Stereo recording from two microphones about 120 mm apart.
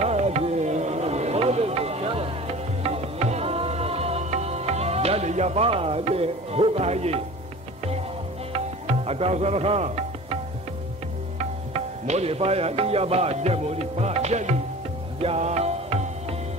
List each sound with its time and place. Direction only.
0.0 s music: 65° right (ahead or behind)
8.5 s music: 55° right (ahead or behind)